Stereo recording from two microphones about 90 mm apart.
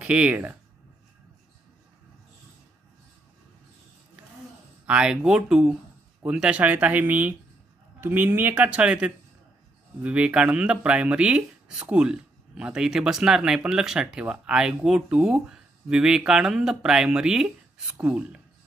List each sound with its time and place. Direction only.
0.0 s speech: 15° right (ahead or behind)
4.8 s speech: 10° right (ahead or behind)